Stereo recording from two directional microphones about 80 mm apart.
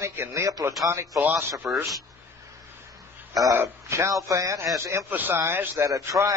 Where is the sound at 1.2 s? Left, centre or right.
Right.